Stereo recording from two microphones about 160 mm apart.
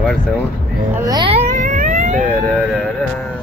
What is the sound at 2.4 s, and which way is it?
Speech, centre (ahead or behind).